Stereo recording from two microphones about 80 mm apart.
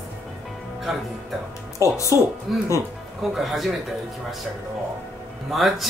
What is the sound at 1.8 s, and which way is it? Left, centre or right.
Speech, left.